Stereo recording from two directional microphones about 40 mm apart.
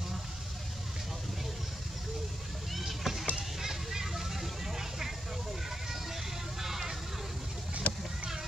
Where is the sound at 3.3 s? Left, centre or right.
Centre.